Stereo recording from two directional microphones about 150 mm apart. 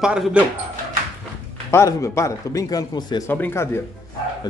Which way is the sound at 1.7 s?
20° left (ahead or behind).